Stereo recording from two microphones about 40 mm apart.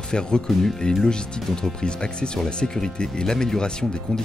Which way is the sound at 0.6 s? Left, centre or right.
Centre.